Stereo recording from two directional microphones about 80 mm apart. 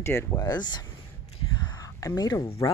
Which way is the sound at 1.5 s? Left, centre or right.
Left.